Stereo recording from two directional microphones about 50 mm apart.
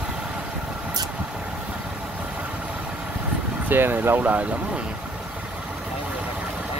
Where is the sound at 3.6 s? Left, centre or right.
Right.